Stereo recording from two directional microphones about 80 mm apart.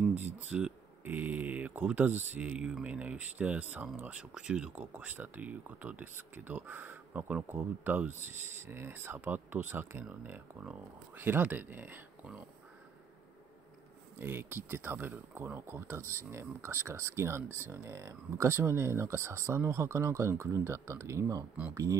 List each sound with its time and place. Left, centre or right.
0.1 s speech: centre
14.1 s speech: right